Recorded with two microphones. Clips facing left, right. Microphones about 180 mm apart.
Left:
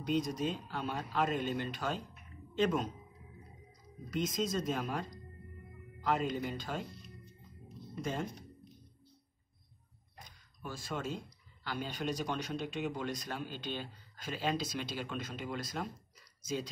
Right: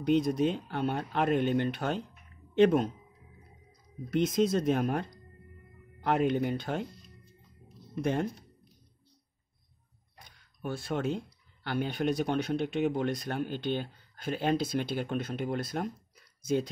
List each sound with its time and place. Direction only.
0.0 s speech: 60° right (ahead or behind)
4.1 s speech: 65° right (ahead or behind)
8.0 s speech: 65° right (ahead or behind)
10.2 s a sound: 65° right (ahead or behind)
11.6 s speech: 60° right (ahead or behind)